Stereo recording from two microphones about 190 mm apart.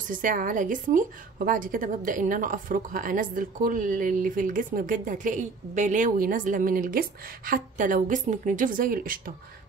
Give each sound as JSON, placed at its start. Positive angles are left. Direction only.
{"t": 0.1, "sound": "a woman's voice", "side_deg": -45}